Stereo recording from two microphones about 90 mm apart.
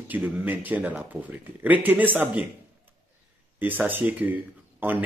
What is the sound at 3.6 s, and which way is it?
Speech, 20° right (ahead or behind).